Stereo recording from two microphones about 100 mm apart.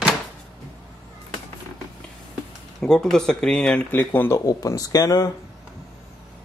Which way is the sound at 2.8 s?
5° left (ahead or behind).